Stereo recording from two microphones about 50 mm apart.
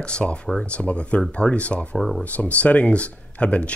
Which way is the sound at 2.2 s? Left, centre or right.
Left.